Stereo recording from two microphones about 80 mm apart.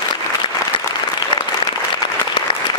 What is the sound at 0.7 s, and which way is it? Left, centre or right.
Applause, left.